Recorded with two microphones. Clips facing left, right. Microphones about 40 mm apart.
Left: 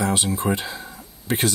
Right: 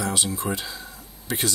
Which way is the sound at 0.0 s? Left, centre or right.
Left.